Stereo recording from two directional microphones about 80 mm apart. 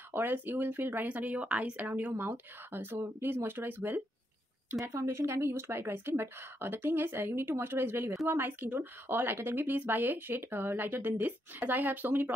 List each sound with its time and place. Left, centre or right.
0.1 s a woman's voice: right
4.7 s a woman's voice: right